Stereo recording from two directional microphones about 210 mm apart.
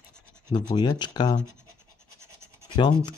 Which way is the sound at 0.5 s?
20° left (ahead or behind).